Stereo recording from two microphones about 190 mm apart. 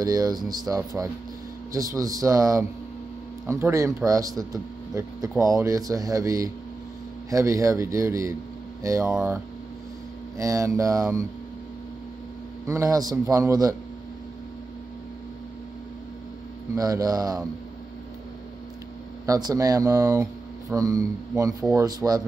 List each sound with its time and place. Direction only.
0.0 s speech: 20° right (ahead or behind)
12.6 s speech: 15° right (ahead or behind)
16.7 s speech: 20° right (ahead or behind)
19.2 s speech: 20° right (ahead or behind)